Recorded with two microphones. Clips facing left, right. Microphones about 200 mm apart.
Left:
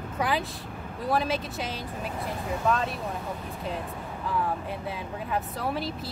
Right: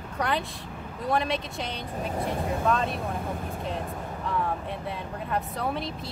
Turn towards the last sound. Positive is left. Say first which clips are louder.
# even
turn(degrees=0)  # may be behind; listen again after turning